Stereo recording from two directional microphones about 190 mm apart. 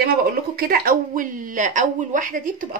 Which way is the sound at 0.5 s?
55° right (ahead or behind).